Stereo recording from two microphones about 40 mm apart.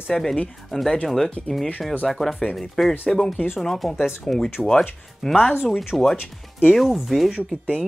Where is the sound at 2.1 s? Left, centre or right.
Centre.